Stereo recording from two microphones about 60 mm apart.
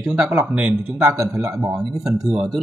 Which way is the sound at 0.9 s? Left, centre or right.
Right.